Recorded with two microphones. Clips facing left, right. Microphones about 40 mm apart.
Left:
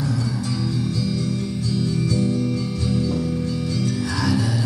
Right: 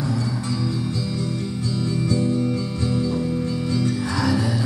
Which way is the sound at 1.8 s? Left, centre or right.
Right.